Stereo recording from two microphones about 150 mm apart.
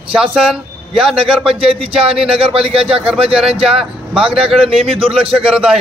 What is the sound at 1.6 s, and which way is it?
A man's voice, 40° right (ahead or behind).